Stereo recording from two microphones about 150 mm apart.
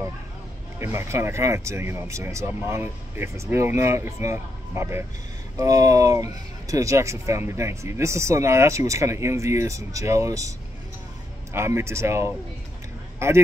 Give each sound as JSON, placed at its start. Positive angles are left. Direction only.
{"t": 0.7, "sound": "speech", "side_deg": -15}
{"t": 11.5, "sound": "speech", "side_deg": -15}